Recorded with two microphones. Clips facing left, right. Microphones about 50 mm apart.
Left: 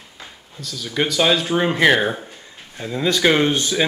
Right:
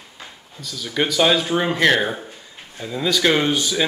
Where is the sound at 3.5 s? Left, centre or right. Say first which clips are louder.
Even; left.